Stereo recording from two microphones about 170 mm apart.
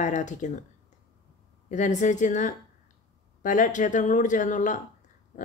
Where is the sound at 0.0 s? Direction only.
45° left (ahead or behind).